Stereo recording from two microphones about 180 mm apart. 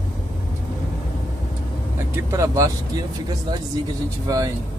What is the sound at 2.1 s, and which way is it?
Speech, 20° right (ahead or behind).